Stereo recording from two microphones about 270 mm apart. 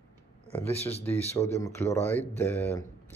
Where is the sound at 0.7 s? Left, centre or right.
Left.